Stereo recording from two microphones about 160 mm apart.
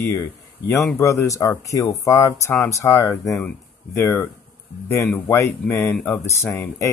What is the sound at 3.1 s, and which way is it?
Speech, centre (ahead or behind).